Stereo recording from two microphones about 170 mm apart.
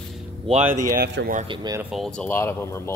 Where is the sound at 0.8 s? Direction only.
65° right (ahead or behind).